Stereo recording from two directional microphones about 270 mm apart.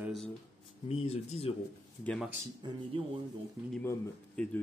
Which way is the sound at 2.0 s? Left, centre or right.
Centre.